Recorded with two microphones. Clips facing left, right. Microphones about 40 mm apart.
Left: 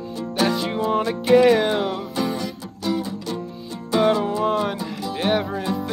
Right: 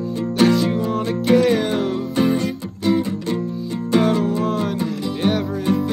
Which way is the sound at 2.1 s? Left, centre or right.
Right.